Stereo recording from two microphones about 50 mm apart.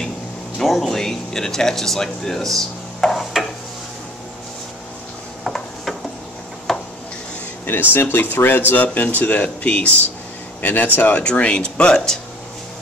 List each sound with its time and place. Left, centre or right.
0.6 s speech: centre
5.4 s a sound: centre
7.9 s speech: left
8.7 s speech: left; by 12.2 s centre